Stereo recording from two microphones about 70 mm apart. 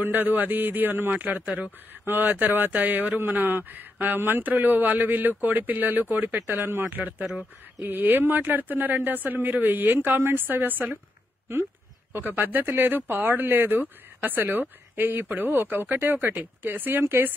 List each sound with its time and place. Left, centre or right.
0.0 s a man's voice: right
12.1 s a man's voice: right